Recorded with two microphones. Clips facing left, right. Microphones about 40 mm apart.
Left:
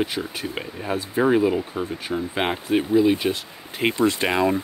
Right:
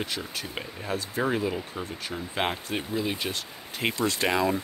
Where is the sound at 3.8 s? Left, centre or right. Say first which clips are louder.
Left 5 dB; left.